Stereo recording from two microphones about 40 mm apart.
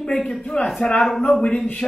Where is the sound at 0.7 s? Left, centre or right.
Left.